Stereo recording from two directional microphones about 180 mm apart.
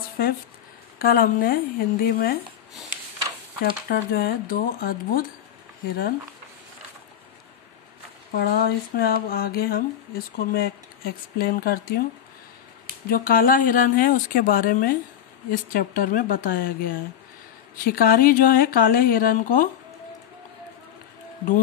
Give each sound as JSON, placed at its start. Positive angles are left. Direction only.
{"t": 0.2, "sound": "speech", "side_deg": 55}
{"t": 3.9, "sound": "speech", "side_deg": 60}
{"t": 8.4, "sound": "speech", "side_deg": 60}
{"t": 13.1, "sound": "speech", "side_deg": 55}